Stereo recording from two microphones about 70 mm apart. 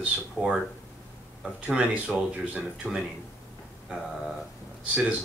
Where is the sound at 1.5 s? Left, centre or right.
Centre.